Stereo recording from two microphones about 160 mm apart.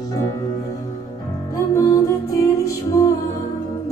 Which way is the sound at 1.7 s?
20° left (ahead or behind).